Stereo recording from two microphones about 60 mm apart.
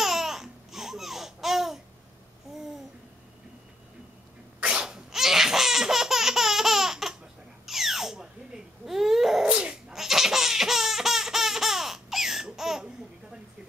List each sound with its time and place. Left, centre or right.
0.0 s babbling: centre
4.6 s laughter: centre
7.6 s babbling: centre
8.8 s baby cry: centre
9.5 s dog: centre
9.9 s baby laughter: centre